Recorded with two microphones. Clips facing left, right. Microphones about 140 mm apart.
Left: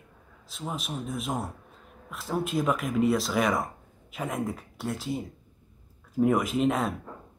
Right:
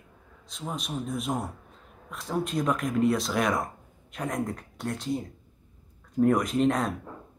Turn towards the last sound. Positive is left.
turn(degrees=5)  # may be behind; listen again after turning